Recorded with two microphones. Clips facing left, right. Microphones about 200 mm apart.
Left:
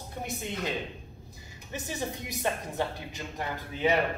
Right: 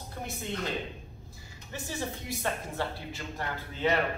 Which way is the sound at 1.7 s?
20° left (ahead or behind).